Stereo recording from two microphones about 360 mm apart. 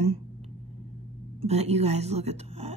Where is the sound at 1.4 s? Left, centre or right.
Centre.